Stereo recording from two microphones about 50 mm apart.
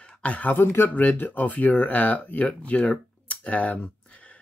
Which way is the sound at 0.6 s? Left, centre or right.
Left.